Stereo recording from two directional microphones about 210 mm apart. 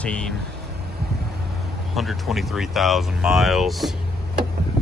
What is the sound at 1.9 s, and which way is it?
Speech, centre (ahead or behind).